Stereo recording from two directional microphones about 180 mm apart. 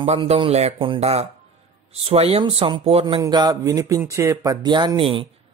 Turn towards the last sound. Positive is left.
turn(degrees=-30)  # may be behind; listen again after turning